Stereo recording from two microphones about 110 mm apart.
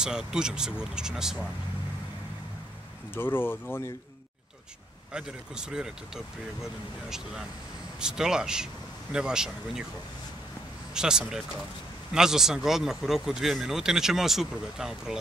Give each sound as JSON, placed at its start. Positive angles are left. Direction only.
{"t": 0.0, "sound": "speech", "side_deg": -5}
{"t": 3.2, "sound": "speech", "side_deg": 20}
{"t": 5.1, "sound": "speech", "side_deg": -5}
{"t": 10.9, "sound": "speech", "side_deg": -5}